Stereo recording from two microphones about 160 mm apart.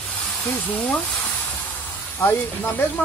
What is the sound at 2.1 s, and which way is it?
Speech, 10° left (ahead or behind).